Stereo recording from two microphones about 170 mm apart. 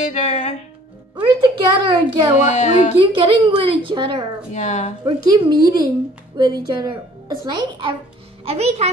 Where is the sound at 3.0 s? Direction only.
30° right (ahead or behind).